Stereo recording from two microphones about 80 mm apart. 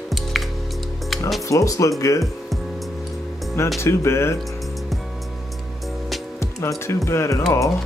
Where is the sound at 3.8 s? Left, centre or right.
Left.